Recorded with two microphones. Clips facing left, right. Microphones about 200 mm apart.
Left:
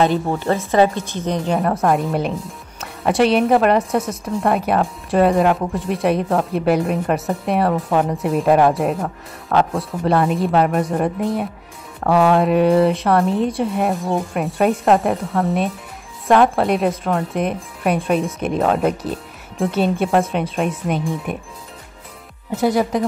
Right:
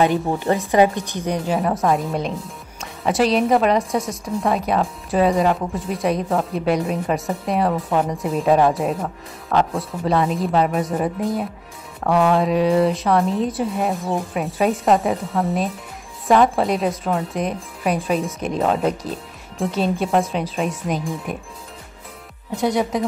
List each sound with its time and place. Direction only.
0.0 s a woman's voice: 15° right (ahead or behind); by 21.4 s centre (ahead or behind)
22.6 s a woman's voice: centre (ahead or behind)